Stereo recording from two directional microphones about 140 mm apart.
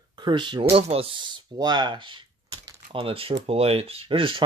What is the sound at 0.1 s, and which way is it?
Speech, 35° right (ahead or behind).